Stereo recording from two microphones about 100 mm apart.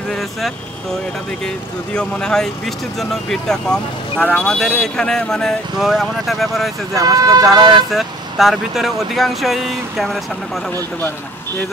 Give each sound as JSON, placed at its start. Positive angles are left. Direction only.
{"t": 0.1, "sound": "speech", "side_deg": 0}
{"t": 2.0, "sound": "speech", "side_deg": 10}
{"t": 6.9, "sound": "speech", "side_deg": -35}
{"t": 7.9, "sound": "speech", "side_deg": 0}